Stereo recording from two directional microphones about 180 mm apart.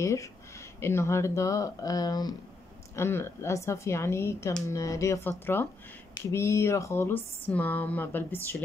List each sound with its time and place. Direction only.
0.0 s speech: 15° left (ahead or behind)
6.3 s speech: 15° left (ahead or behind)